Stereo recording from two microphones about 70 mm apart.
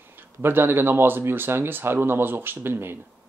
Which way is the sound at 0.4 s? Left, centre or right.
Right.